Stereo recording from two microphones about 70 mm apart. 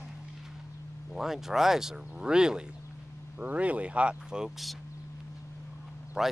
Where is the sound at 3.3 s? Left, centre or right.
Right; by 4.7 s centre.